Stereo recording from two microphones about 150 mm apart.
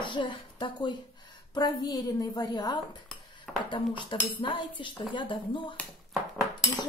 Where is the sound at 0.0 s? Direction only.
35° left (ahead or behind).